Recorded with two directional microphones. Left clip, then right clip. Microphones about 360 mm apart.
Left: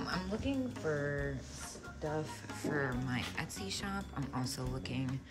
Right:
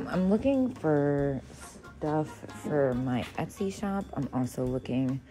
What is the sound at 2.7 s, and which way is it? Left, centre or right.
Speech, centre.